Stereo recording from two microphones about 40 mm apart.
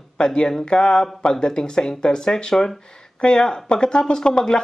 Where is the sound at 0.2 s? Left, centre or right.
Centre.